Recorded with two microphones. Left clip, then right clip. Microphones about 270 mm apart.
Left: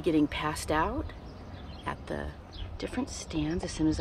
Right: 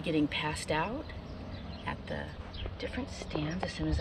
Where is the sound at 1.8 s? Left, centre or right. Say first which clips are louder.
Left 3 dB; left.